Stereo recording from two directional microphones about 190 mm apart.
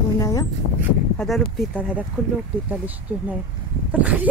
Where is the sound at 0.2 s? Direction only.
20° left (ahead or behind).